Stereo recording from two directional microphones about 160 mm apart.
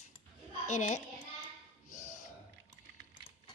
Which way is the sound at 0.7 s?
45° left (ahead or behind).